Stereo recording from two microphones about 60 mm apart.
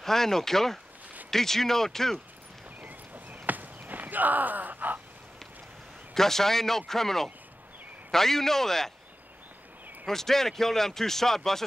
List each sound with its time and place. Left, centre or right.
0.0 s speech: centre
2.8 s walk: right
6.1 s speech: centre
10.0 s speech: centre